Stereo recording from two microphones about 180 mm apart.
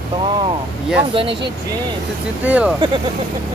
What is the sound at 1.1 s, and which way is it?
Speech, 30° right (ahead or behind).